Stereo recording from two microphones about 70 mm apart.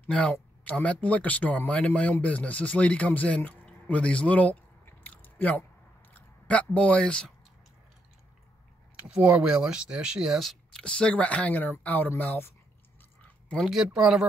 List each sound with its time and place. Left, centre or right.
0.1 s a man's voice: centre
4.8 s chewing: left
6.1 s speech: left
8.9 s speech: centre
10.8 s a man's voice: centre
13.9 s speech: centre